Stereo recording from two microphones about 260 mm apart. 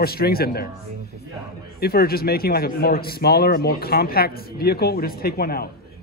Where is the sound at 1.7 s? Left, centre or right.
Left.